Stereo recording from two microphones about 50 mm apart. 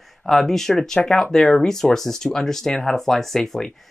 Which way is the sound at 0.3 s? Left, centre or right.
Centre.